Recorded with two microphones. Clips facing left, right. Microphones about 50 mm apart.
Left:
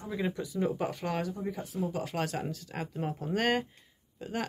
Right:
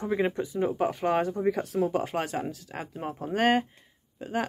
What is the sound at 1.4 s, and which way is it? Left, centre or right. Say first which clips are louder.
Speech: right 9 dB; right.